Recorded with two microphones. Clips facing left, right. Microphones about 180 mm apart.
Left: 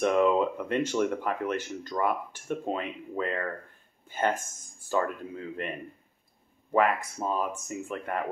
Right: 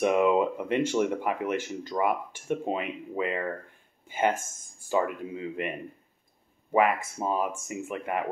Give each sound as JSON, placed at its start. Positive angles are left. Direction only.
{"t": 0.0, "sound": "speech", "side_deg": -10}
{"t": 7.2, "sound": "speech", "side_deg": -10}